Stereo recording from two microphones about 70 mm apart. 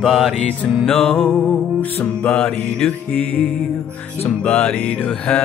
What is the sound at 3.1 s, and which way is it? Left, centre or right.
Music, left.